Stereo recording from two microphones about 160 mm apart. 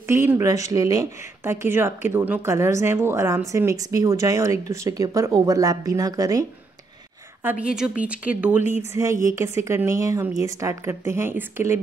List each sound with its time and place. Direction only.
0.1 s a woman's voice: 15° right (ahead or behind)
7.6 s a woman's voice: 5° right (ahead or behind)